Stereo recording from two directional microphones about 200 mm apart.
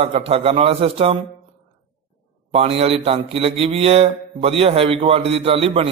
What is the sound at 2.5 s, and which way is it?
Speech, 30° right (ahead or behind).